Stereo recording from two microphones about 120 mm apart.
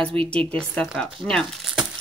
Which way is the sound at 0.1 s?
50° right (ahead or behind).